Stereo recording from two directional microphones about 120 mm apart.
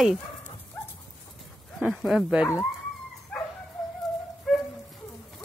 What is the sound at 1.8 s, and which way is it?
Speech, 5° right (ahead or behind).